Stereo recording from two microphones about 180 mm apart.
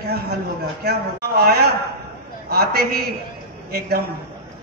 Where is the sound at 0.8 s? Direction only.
60° right (ahead or behind).